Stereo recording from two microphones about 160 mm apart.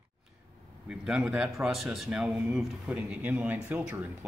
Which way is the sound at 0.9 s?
5° right (ahead or behind).